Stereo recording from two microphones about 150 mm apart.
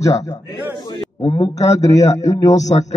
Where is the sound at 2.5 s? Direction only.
50° left (ahead or behind).